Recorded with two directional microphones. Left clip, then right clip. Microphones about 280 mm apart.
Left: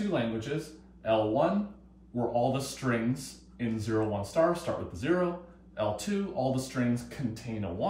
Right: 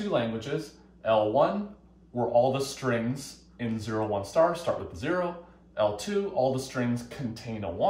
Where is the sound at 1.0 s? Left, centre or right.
Centre.